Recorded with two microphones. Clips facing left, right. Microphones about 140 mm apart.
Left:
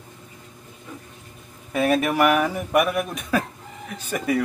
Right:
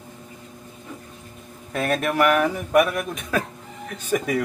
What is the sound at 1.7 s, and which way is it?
A man's voice, 5° left (ahead or behind).